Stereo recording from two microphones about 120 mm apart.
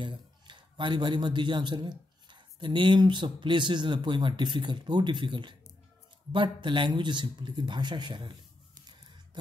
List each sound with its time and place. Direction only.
0.0 s a man's voice: 40° right (ahead or behind)